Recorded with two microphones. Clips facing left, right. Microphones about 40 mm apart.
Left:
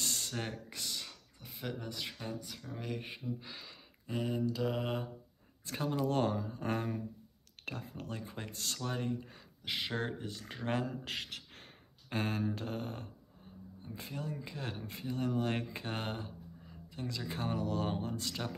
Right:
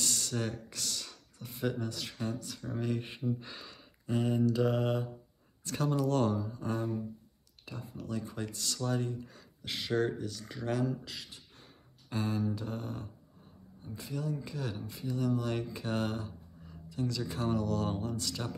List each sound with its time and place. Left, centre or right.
0.0 s a sound: left
1.4 s speech: centre
1.8 s speech: centre
5.6 s speech: left
8.2 s speech: left